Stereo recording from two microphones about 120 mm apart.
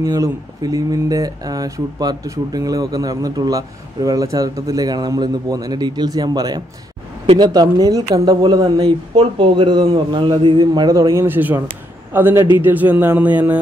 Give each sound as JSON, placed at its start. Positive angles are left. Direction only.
{"t": 0.0, "sound": "speech", "side_deg": -30}